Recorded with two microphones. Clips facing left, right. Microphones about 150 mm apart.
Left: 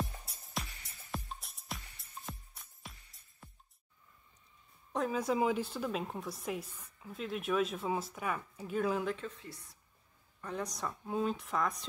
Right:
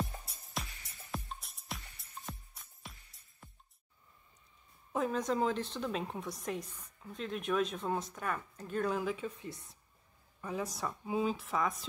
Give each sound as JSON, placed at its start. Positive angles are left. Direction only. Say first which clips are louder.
{"t": 0.0, "sound": "music", "louder": "right 1 dB", "side_deg": 0}
{"t": 4.9, "sound": "speech", "louder": "even", "side_deg": 5}
{"t": 9.5, "sound": "a woman's voice", "louder": "right 4 dB", "side_deg": -20}
{"t": 10.4, "sound": "speech", "louder": "right 1 dB", "side_deg": -5}